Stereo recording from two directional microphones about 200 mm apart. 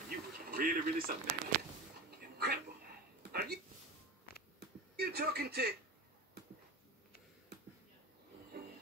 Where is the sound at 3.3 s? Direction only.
55° right (ahead or behind).